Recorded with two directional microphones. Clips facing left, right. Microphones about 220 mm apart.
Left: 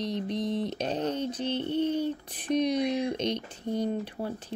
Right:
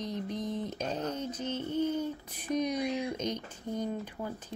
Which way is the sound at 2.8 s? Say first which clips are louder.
Left 4 dB; 35° left (ahead or behind).